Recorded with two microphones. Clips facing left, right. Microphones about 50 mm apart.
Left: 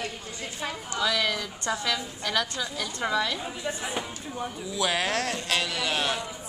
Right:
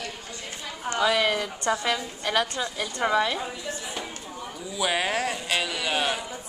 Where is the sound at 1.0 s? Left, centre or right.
Right.